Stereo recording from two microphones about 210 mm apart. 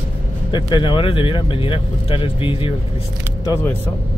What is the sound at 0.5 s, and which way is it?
Speech, 20° left (ahead or behind).